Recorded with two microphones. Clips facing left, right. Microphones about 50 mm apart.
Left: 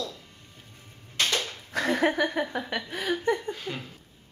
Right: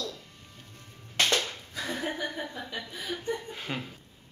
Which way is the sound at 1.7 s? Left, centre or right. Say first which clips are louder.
Left 12 dB; left.